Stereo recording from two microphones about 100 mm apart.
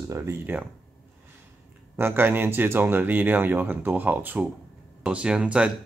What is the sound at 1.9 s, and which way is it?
Speech, 20° right (ahead or behind).